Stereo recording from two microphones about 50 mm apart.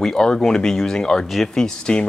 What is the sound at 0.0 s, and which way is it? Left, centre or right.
Speech, centre.